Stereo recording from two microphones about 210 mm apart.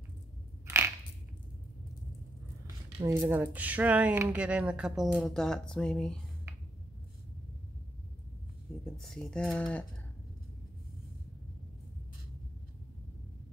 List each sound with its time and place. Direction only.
0.7 s crushing: 10° right (ahead or behind)
2.6 s a sound: 15° right (ahead or behind)
3.2 s speech: 10° right (ahead or behind)
8.8 s speech: centre (ahead or behind)